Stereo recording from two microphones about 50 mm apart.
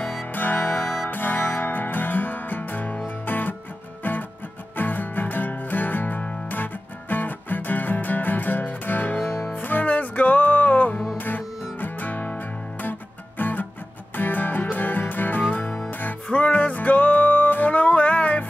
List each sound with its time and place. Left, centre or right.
0.3 s music: left
13.4 s music: left